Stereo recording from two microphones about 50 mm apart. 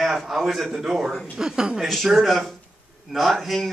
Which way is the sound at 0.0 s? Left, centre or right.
Centre.